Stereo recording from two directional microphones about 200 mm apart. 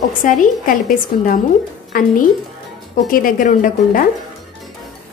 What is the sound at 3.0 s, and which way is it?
Speech, 45° left (ahead or behind).